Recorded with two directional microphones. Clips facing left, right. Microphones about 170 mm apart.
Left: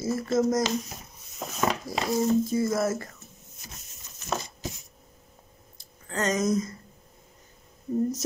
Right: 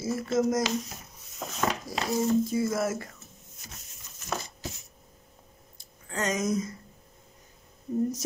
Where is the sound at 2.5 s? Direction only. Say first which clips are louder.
Left 2 dB; 10° right (ahead or behind).